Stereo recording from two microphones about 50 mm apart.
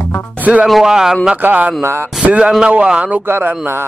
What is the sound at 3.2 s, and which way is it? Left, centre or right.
Speech, right.